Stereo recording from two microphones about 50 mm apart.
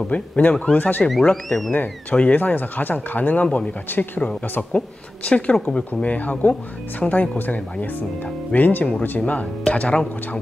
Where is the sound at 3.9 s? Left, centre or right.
Left.